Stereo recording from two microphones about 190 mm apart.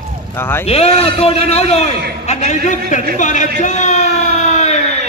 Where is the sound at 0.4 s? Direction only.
10° left (ahead or behind).